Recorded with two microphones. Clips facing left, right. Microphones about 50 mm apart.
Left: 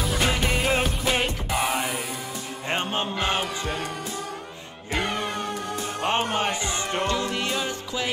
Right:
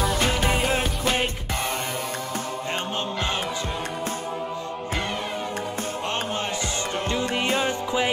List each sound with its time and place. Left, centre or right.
0.0 s music: centre
2.7 s music: left
6.0 s music: left
7.4 s music: right